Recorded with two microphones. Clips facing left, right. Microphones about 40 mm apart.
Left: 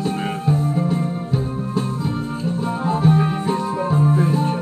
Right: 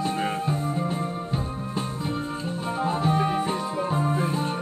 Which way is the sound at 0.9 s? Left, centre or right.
Centre.